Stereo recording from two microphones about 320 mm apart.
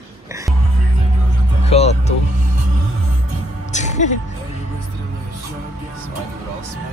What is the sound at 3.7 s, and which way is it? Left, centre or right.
Music, left.